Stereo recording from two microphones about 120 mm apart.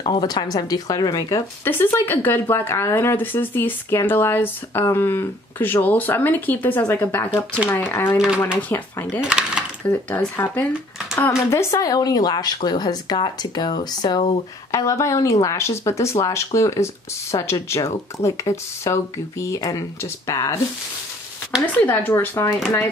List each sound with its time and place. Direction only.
0.0 s speech: 35° left (ahead or behind); by 9.2 s 15° left (ahead or behind)
9.2 s a sound: 10° right (ahead or behind)
9.8 s speech: 15° left (ahead or behind)
21.7 s speech: 15° left (ahead or behind)